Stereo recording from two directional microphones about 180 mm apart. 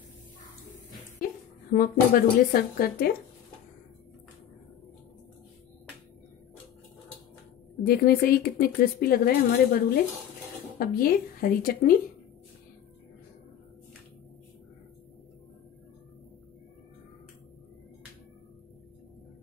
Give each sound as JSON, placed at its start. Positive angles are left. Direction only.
{"t": 1.7, "sound": "speech", "side_deg": 55}
{"t": 7.8, "sound": "speech", "side_deg": 60}